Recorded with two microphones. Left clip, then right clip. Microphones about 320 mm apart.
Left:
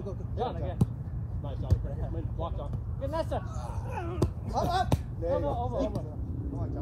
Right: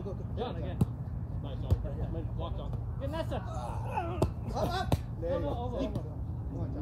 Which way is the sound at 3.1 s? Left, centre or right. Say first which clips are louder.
Left 5 dB; centre.